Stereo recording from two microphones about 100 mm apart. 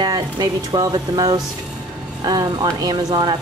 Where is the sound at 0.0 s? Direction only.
45° right (ahead or behind).